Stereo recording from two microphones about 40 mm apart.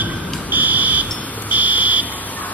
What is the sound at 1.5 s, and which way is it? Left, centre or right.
Fire alarm, right.